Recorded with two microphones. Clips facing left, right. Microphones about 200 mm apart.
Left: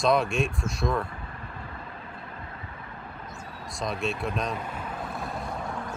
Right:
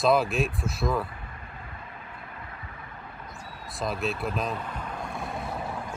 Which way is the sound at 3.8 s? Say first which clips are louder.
Even; centre (ahead or behind).